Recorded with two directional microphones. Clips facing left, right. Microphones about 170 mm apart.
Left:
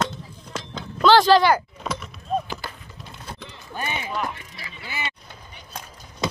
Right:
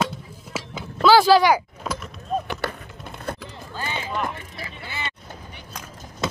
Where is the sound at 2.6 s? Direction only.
70° right (ahead or behind).